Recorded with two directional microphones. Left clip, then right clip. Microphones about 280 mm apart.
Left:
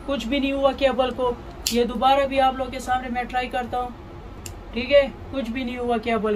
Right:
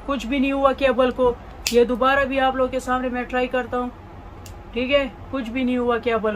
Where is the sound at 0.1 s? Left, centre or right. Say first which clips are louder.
Right 1 dB; centre.